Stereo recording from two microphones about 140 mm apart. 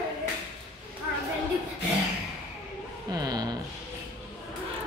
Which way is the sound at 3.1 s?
30° right (ahead or behind).